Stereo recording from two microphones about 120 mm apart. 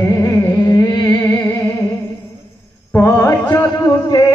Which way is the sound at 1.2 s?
20° left (ahead or behind).